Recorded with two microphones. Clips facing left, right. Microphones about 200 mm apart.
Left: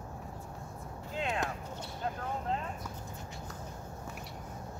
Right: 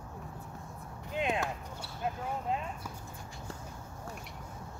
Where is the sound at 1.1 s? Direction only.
15° right (ahead or behind).